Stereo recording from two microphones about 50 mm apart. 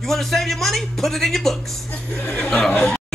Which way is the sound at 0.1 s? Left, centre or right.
Centre.